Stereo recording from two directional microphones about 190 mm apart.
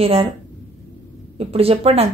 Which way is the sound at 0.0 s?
30° right (ahead or behind).